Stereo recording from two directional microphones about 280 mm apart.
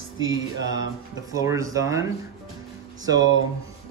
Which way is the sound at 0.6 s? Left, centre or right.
Right.